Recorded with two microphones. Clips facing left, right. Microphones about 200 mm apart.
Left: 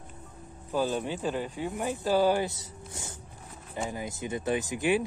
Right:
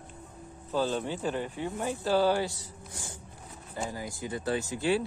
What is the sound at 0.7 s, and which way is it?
Speech, 15° left (ahead or behind).